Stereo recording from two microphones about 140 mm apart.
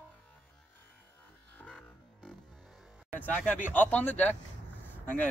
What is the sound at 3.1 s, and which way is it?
Speech, 10° left (ahead or behind).